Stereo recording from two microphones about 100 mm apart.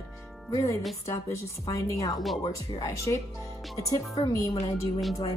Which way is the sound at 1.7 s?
35° left (ahead or behind).